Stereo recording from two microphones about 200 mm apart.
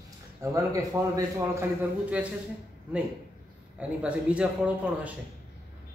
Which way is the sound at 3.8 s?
5° right (ahead or behind).